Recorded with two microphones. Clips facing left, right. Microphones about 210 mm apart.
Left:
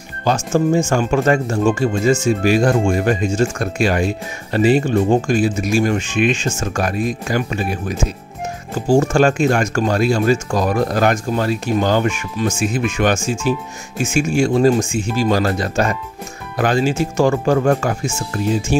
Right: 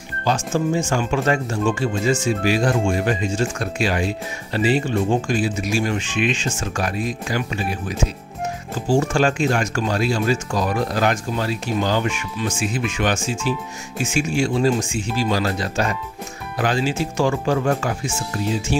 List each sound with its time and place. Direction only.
0.2 s speech: 45° left (ahead or behind)
8.8 s speech: 45° left (ahead or behind)